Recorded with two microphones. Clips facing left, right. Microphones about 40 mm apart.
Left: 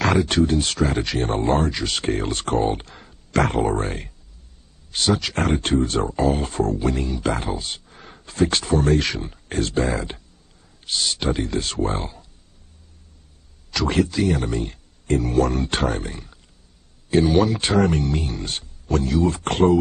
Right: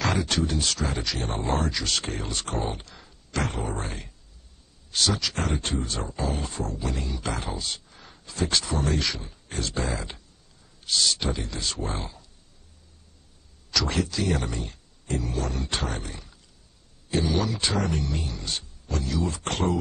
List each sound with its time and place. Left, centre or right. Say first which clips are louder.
0.0 s speech: left 7 dB; left
1.8 s speech: left 3 dB; left
2.0 s speech: left 9 dB; left
4.9 s speech: left 5 dB; left
7.5 s speech: left 3 dB; left
7.9 s speech: left 3 dB; left
10.9 s speech: even; centre
11.1 s speech: left 7 dB; left
14.2 s speech: left 6 dB; left
14.5 s speech: left 8 dB; left